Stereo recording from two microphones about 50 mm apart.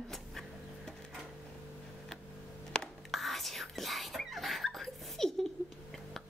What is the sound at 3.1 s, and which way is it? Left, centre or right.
Whispering, centre.